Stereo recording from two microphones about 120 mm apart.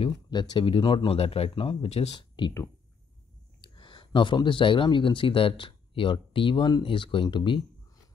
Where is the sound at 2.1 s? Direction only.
40° left (ahead or behind).